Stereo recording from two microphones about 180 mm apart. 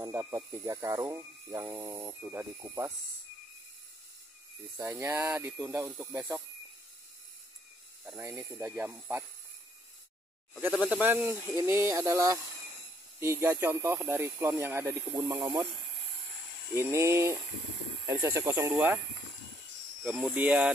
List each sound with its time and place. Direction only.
0.0 s snake: 15° right (ahead or behind)
0.5 s speech: 15° right (ahead or behind)
4.7 s speech: 15° right (ahead or behind)
8.2 s speech: 15° right (ahead or behind)
10.9 s speech: 10° right (ahead or behind)
16.7 s speech: 15° right (ahead or behind)
20.0 s speech: 10° right (ahead or behind)